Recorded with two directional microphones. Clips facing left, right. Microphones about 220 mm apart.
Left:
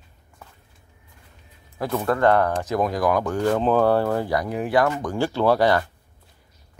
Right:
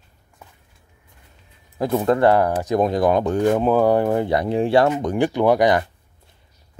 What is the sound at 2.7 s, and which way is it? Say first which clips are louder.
Speech: right 4 dB; 25° right (ahead or behind).